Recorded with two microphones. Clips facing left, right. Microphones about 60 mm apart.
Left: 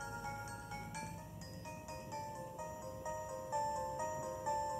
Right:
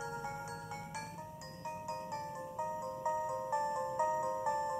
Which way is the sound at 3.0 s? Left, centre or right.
Right.